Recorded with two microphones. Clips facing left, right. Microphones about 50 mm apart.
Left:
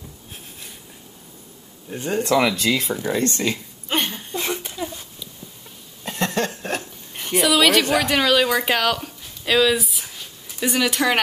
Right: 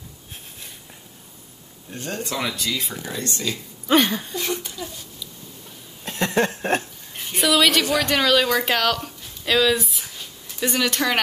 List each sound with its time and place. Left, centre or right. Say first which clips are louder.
1.9 s speech: left 6 dB; centre
2.2 s speech: left 10 dB; left
2.5 s speech: left 6 dB; left
2.9 s speech: left 8 dB; left
4.4 s speech: left 1 dB; left
6.0 s a sound: left 1 dB; centre
6.3 s a sound: right 3 dB; right
7.3 s speech: left 2 dB; centre